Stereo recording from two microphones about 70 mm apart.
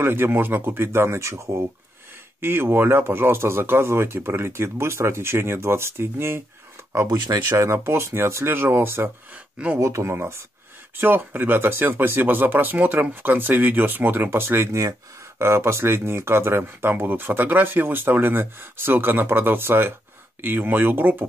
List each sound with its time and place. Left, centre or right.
0.0 s speech: right
7.1 s speech: right
7.4 s speech: right
9.3 s speech: right
9.8 s speech: right